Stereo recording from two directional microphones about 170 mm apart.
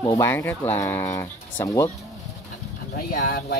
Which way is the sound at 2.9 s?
65° left (ahead or behind).